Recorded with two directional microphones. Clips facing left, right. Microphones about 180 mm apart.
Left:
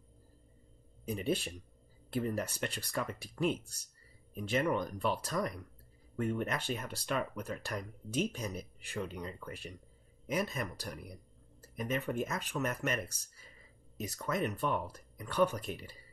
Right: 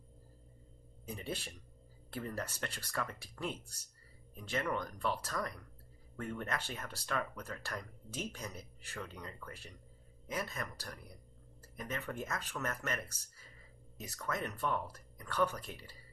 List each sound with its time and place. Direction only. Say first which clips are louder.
1.0 s speech: left 8 dB; 15° left (ahead or behind)